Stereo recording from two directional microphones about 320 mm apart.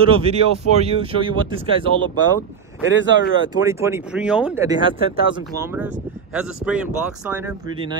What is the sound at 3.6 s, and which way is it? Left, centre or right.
Speech, centre.